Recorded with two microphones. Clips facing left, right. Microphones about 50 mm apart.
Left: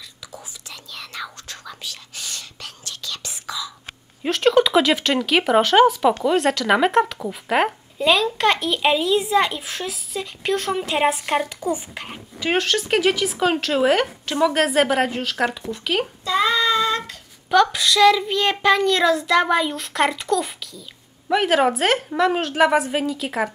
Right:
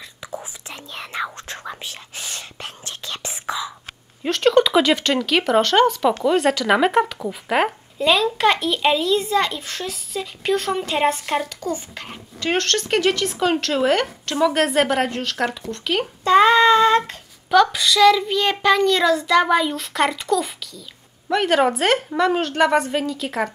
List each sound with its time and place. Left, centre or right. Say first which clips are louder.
0.2 s whispering: right 8 dB; right
4.2 s a woman's voice: right 1 dB; centre
16.3 s child singing: right 7 dB; right
17.5 s a woman's voice: right 1 dB; centre